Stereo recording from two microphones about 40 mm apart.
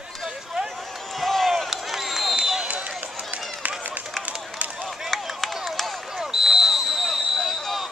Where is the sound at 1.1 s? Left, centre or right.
Centre.